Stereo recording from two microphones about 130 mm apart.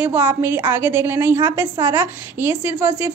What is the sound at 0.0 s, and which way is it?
A woman's voice, 15° right (ahead or behind).